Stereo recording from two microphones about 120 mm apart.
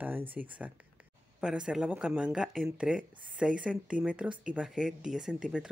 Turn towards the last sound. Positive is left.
turn(degrees=-5)  # may be behind; listen again after turning